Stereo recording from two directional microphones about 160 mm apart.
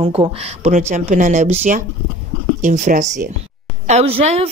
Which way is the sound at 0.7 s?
50° right (ahead or behind).